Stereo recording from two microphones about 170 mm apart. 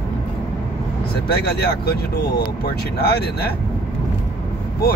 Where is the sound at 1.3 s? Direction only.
70° left (ahead or behind).